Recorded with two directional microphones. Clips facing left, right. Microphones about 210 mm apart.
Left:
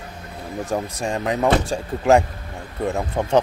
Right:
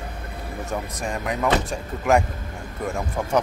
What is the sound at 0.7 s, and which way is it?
Speech, 30° left (ahead or behind).